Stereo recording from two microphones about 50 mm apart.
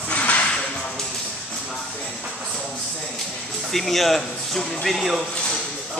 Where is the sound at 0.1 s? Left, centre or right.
Left.